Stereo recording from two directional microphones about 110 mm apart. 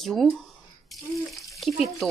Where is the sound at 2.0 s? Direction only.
Centre (ahead or behind).